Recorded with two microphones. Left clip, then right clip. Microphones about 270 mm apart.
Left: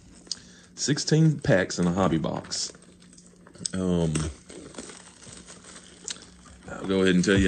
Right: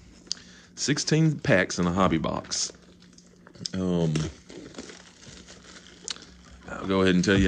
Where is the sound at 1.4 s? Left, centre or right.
Right.